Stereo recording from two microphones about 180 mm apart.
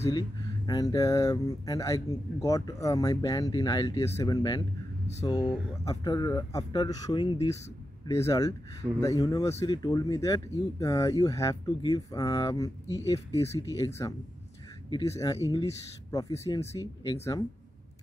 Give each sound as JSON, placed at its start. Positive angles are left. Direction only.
{"t": 0.7, "sound": "speech", "side_deg": 20}